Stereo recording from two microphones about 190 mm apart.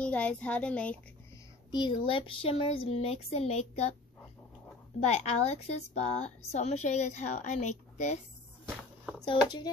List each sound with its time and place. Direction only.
0.0 s a woman's voice: 5° left (ahead or behind)
1.7 s a woman's voice: 25° left (ahead or behind)
5.0 s a woman's voice: 35° left (ahead or behind)
9.2 s speech: 25° left (ahead or behind)